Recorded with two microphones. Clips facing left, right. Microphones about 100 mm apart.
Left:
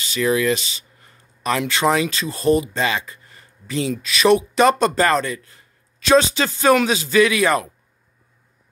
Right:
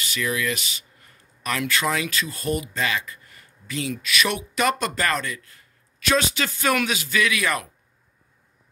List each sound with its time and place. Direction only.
0.0 s speech: 25° left (ahead or behind)